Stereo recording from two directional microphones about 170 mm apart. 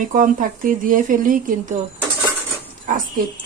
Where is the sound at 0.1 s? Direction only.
50° right (ahead or behind).